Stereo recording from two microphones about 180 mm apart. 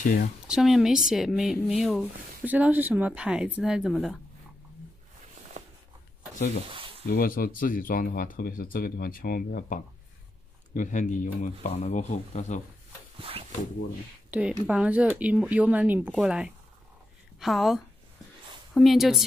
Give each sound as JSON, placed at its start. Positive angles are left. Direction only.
{"t": 0.0, "sound": "speech", "side_deg": 50}
{"t": 0.5, "sound": "speech", "side_deg": 0}
{"t": 6.7, "sound": "a sound", "side_deg": -30}
{"t": 7.1, "sound": "speech", "side_deg": 55}
{"t": 13.2, "sound": "speech", "side_deg": -30}
{"t": 14.3, "sound": "speech", "side_deg": -5}